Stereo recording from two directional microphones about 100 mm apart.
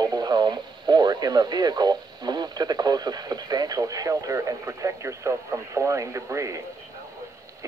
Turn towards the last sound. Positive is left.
turn(degrees=-30)  # may be behind; listen again after turning